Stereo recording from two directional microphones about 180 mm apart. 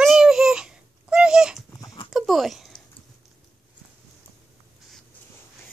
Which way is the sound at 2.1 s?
Centre (ahead or behind).